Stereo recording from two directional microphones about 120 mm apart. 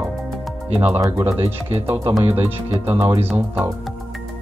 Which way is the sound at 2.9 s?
20° right (ahead or behind).